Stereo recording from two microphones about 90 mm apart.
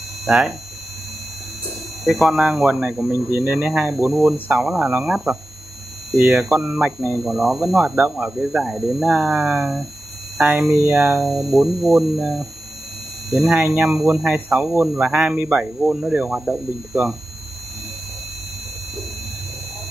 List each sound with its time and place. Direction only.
0.3 s speech: 10° right (ahead or behind)
2.2 s speech: 5° right (ahead or behind)
4.2 s speech: 5° right (ahead or behind)
11.2 s speech: 5° right (ahead or behind)
13.7 s speech: 15° right (ahead or behind)